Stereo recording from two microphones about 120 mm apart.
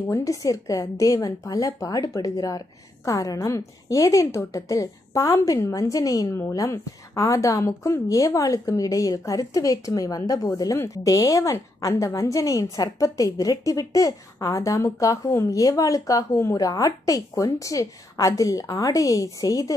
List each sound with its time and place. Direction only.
0.1 s a woman's voice: 25° left (ahead or behind)